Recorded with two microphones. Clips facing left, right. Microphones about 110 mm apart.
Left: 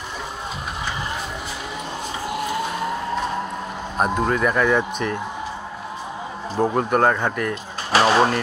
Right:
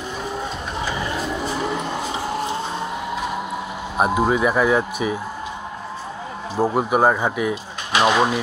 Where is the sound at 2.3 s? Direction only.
30° right (ahead or behind).